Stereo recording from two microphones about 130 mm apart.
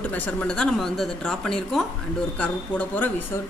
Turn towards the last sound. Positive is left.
turn(degrees=10)  # may be behind; listen again after turning